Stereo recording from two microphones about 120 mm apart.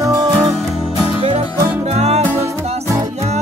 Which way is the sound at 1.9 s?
60° right (ahead or behind).